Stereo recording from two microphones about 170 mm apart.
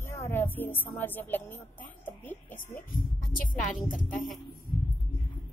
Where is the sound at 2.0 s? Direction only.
10° left (ahead or behind).